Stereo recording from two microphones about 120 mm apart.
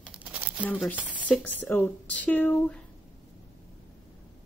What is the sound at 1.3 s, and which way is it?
Speech, 15° left (ahead or behind).